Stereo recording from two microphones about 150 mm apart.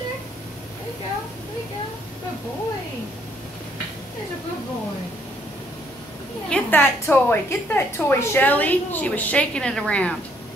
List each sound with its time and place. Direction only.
6.5 s a woman's voice: 10° left (ahead or behind)